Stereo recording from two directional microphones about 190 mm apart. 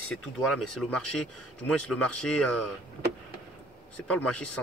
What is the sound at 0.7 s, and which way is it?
A man's voice, centre (ahead or behind).